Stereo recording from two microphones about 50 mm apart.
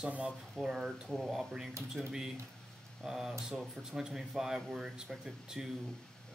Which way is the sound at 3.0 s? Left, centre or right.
Centre.